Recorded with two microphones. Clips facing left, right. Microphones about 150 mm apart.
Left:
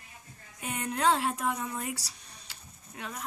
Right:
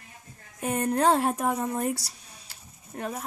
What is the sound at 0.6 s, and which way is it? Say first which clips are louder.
A child's voice: right 7 dB; 40° right (ahead or behind).